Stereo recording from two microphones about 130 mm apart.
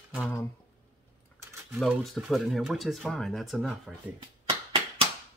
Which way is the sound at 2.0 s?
Centre (ahead or behind).